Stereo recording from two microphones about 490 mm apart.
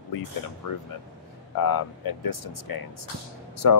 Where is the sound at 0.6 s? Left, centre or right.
Left.